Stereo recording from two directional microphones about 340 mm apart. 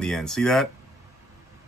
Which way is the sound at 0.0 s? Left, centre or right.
Centre.